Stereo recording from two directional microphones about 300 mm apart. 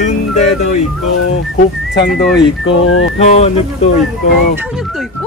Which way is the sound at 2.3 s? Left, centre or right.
Left.